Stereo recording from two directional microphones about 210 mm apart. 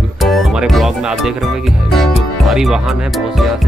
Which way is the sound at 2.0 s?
Centre (ahead or behind).